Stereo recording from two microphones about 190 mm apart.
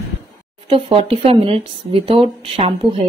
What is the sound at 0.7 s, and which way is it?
Speech, 30° right (ahead or behind).